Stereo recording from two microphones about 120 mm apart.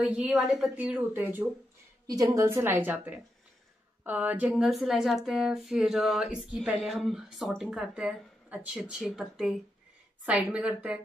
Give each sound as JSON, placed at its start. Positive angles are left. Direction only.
{"t": 0.0, "sound": "a woman's voice", "side_deg": -5}
{"t": 4.6, "sound": "a woman's voice", "side_deg": 0}